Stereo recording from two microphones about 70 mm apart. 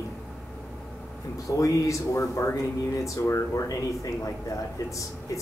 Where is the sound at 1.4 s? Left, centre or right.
Left.